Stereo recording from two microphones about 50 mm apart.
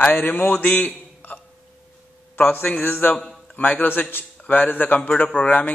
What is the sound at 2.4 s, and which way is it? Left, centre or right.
Speech, left.